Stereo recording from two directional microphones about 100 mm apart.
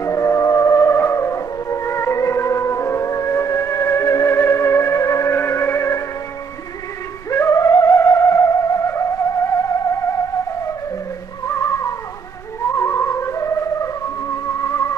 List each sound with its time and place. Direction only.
0.0 s music: 30° left (ahead or behind)
7.2 s theremin: 30° left (ahead or behind)
11.4 s cat: 30° left (ahead or behind)
12.7 s music: 25° left (ahead or behind)